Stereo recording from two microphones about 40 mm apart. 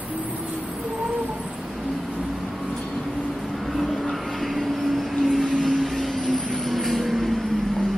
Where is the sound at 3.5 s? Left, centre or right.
Centre.